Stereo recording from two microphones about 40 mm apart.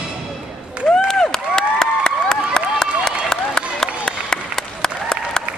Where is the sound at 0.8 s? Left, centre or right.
Centre.